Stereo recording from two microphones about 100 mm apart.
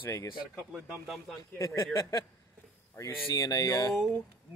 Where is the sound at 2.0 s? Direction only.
35° left (ahead or behind).